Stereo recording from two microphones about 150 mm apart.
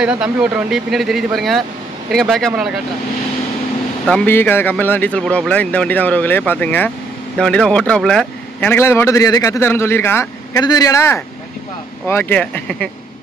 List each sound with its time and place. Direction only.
0.0 s speech: 5° right (ahead or behind)
4.0 s a man's voice: 5° left (ahead or behind)